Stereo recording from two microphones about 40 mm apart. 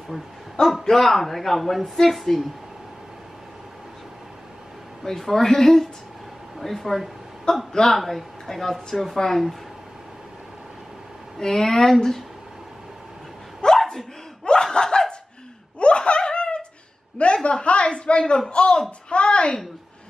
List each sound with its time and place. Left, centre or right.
0.1 s a man's voice: centre
0.8 s speech: centre
5.0 s a woman's voice: centre
7.5 s speech: left
7.8 s a woman's voice: centre
11.3 s a woman's voice: centre
13.7 s dog: centre
14.4 s laughter: left
17.2 s a woman's voice: left